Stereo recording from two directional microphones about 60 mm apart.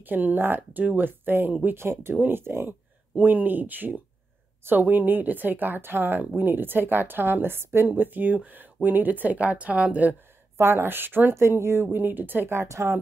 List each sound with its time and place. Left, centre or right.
0.0 s speech: right
2.4 s speech: right
3.2 s a woman's voice: right
10.6 s speech: right
11.3 s speech: right